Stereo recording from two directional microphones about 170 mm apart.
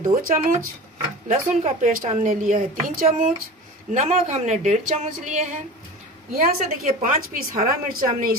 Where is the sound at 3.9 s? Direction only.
40° right (ahead or behind).